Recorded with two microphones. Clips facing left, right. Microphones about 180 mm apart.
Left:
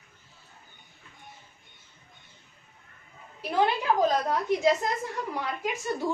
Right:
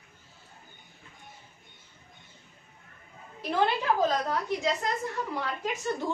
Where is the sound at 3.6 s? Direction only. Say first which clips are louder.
Left 2 dB; 15° left (ahead or behind).